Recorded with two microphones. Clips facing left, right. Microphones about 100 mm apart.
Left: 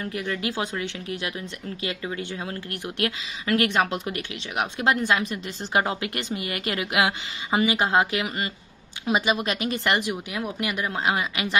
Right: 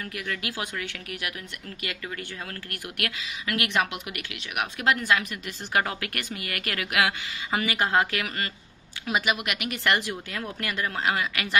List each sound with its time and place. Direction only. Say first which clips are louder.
0.0 s speech: left 5 dB; 25° left (ahead or behind)